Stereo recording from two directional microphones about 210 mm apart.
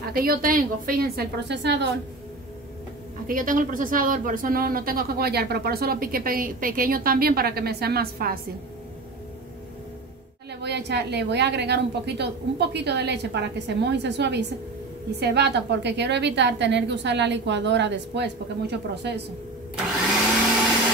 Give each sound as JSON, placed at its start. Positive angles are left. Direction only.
{"t": 0.1, "sound": "speech", "side_deg": -45}
{"t": 3.3, "sound": "speech", "side_deg": -40}
{"t": 10.6, "sound": "a woman's voice", "side_deg": -55}